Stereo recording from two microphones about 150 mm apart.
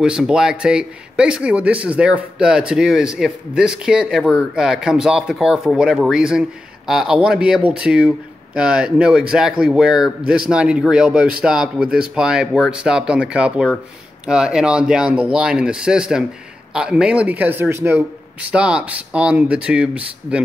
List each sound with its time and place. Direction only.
0.0 s speech: 5° right (ahead or behind)